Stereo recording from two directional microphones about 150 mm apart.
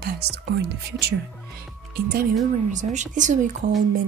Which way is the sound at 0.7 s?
90° right.